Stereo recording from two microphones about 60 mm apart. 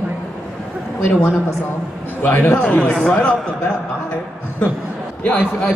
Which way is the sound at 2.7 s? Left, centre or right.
Centre.